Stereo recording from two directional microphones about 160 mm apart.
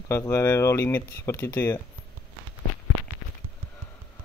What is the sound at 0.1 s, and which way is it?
Speech, 15° left (ahead or behind).